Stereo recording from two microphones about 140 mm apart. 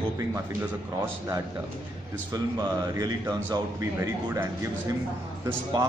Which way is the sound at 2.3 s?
30° right (ahead or behind).